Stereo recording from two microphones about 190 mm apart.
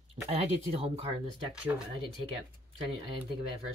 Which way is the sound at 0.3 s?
30° right (ahead or behind).